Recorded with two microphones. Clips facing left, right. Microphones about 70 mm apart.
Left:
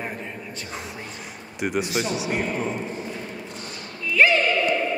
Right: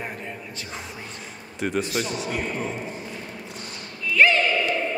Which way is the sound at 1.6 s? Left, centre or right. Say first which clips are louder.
Left 1 dB; centre.